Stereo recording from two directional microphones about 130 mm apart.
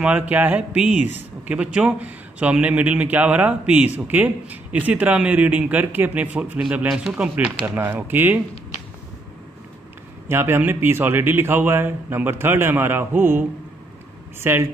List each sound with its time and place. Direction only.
0.0 s speech: 15° right (ahead or behind)
10.2 s speech: 20° right (ahead or behind)
14.4 s speech: 20° right (ahead or behind)